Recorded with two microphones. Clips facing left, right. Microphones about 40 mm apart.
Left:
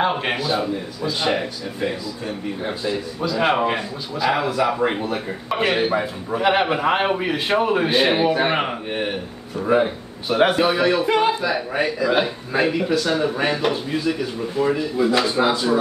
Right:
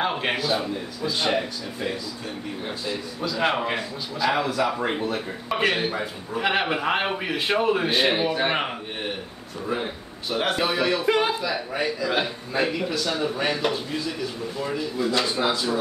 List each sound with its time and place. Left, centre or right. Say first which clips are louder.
0.0 s a man's voice: left 4 dB; centre
9.7 s a man's voice: left 11 dB; centre